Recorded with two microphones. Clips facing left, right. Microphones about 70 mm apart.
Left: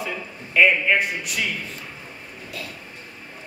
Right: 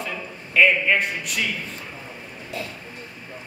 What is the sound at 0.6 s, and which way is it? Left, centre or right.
Speech, centre.